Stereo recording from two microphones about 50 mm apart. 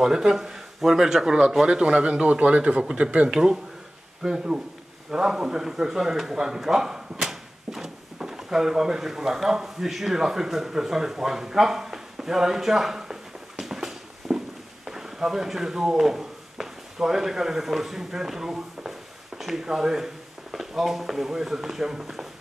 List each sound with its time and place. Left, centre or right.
0.0 s speech: centre
1.8 s speech: right